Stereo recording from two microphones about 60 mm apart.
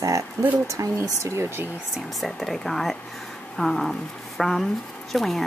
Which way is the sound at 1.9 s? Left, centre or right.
Centre.